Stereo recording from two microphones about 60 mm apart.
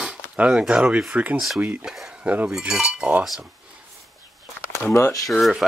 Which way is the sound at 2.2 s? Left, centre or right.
Right.